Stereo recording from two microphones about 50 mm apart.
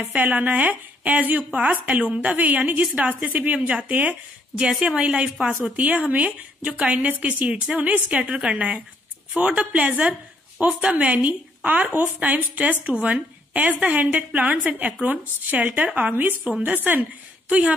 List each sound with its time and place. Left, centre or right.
0.2 s speech: right
4.8 s a woman's voice: centre
11.9 s a woman's voice: right
17.5 s speech: right